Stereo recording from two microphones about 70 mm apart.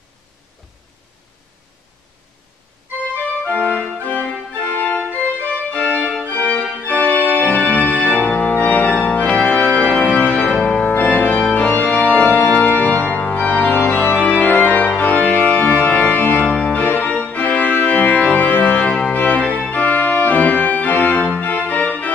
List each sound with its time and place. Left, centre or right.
3.4 s music: left
5.1 s organ: left
6.2 s music: left
6.8 s organ: left